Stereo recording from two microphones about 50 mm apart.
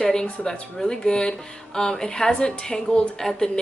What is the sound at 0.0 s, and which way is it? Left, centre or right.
A woman's voice, centre.